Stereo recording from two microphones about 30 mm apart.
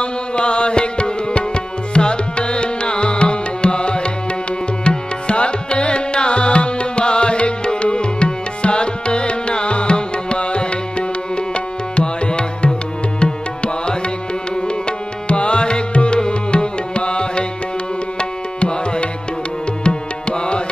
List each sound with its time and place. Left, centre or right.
0.0 s music: left
2.0 s tabla: left
13.2 s music: left
18.6 s tabla: left
19.8 s music: left